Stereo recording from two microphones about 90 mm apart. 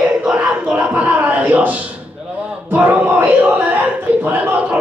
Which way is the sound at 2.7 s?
20° right (ahead or behind).